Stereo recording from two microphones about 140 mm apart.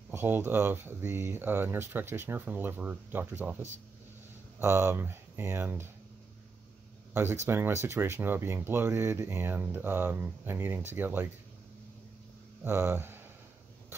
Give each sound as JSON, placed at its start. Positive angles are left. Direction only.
{"t": 0.1, "sound": "speech", "side_deg": -15}
{"t": 7.4, "sound": "speech", "side_deg": -15}
{"t": 12.6, "sound": "speech", "side_deg": -20}